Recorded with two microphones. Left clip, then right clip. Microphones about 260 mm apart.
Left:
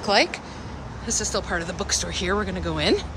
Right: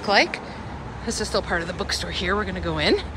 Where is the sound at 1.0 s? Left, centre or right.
Centre.